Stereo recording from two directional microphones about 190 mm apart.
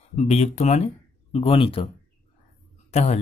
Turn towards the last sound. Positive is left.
turn(degrees=35)  # may be behind; listen again after turning